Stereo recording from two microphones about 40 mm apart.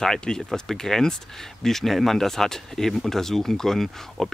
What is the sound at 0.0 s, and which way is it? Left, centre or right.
Speech, centre.